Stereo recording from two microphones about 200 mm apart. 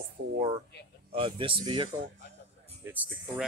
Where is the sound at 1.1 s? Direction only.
25° right (ahead or behind).